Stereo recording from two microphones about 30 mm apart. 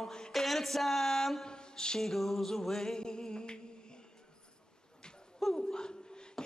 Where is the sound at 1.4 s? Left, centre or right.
Left.